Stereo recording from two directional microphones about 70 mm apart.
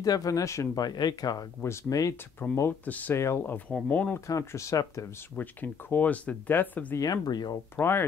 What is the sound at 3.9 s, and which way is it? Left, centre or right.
Speech, left.